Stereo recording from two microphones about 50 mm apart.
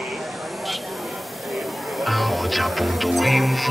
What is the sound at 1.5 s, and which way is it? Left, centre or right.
Music, centre.